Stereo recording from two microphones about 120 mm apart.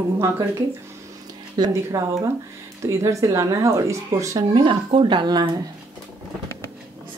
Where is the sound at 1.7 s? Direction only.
25° right (ahead or behind).